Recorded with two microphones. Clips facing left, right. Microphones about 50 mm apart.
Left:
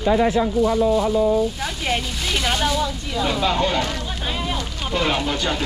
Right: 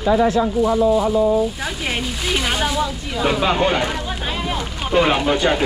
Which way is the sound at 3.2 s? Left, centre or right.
Right.